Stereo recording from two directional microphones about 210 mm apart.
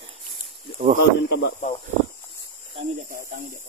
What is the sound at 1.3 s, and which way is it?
Speech, 50° left (ahead or behind).